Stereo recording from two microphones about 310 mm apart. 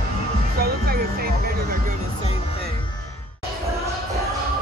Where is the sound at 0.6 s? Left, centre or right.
Right.